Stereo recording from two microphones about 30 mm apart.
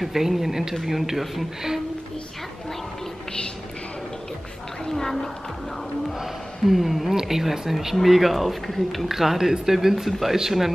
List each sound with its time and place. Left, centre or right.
0.0 s speech: centre
4.8 s a sound: centre
6.6 s speech: centre
9.1 s speech: centre